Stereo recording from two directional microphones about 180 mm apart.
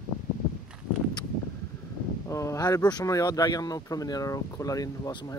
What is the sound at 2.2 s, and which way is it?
Speech, 15° left (ahead or behind).